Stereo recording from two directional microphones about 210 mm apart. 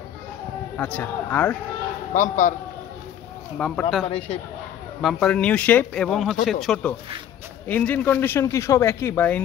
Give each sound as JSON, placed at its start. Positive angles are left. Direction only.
{"t": 0.7, "sound": "a man's voice", "side_deg": 5}
{"t": 2.1, "sound": "a man's voice", "side_deg": 40}
{"t": 3.5, "sound": "speech", "side_deg": 5}
{"t": 4.0, "sound": "a man's voice", "side_deg": 30}
{"t": 5.0, "sound": "a man's voice", "side_deg": 5}